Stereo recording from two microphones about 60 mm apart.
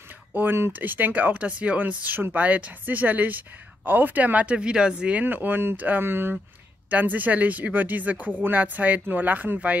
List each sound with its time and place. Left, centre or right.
0.3 s speech: right; by 5.2 s centre
5.2 s speech: right
6.9 s speech: right